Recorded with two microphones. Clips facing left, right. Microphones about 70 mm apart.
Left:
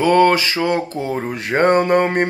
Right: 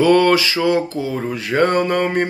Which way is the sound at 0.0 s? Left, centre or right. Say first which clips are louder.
Even; left.